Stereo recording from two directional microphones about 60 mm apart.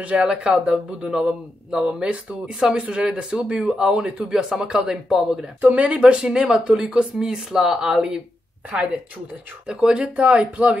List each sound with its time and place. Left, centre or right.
0.0 s speech: centre
5.6 s speech: right
9.7 s speech: centre